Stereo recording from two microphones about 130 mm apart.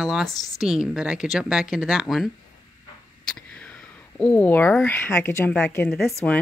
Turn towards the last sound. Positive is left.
turn(degrees=10)  # may be behind; listen again after turning